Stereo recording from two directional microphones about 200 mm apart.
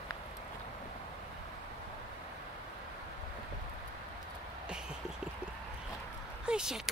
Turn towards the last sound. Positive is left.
turn(degrees=-5)  # may be behind; listen again after turning